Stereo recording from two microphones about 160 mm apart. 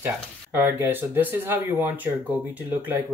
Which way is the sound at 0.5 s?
15° right (ahead or behind).